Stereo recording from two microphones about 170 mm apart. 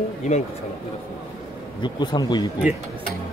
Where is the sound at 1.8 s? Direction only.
25° left (ahead or behind).